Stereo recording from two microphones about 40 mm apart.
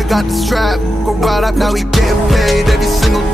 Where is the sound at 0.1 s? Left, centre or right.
Centre.